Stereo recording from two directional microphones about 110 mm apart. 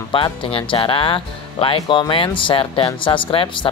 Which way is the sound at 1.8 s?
35° left (ahead or behind).